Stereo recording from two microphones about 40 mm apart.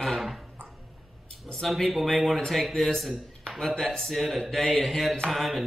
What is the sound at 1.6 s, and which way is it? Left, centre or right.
A man's voice, centre.